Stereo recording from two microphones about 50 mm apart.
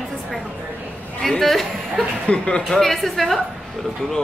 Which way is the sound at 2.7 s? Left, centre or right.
Centre.